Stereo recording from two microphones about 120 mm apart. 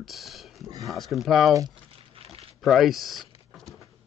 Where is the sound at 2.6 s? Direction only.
Centre (ahead or behind).